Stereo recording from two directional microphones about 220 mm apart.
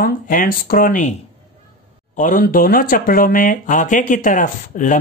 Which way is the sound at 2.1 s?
35° left (ahead or behind).